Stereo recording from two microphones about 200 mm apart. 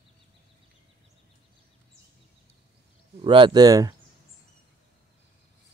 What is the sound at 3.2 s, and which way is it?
Speech, 25° right (ahead or behind).